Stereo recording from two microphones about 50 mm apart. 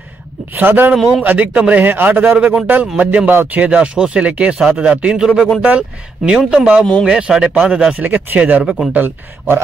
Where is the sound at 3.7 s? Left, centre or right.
Centre.